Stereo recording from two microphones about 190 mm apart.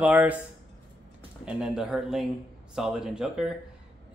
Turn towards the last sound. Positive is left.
turn(degrees=-5)  # may be behind; listen again after turning